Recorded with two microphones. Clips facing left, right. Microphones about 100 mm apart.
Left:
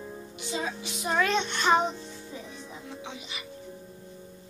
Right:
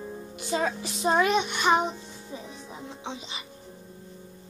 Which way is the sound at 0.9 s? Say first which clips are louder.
Right 3 dB; 25° right (ahead or behind).